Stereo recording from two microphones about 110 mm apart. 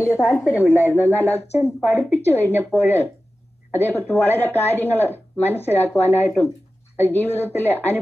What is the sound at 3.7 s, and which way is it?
Speech, 15° left (ahead or behind).